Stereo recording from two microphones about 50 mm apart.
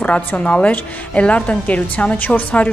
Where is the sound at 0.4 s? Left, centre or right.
Left.